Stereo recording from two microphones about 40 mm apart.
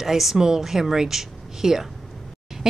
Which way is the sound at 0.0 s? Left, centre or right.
Centre.